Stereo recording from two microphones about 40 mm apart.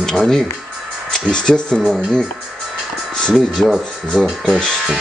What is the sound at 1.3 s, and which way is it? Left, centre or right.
Speech, centre.